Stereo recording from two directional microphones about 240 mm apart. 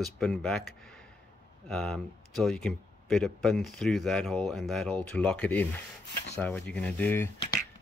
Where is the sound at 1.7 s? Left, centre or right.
Centre.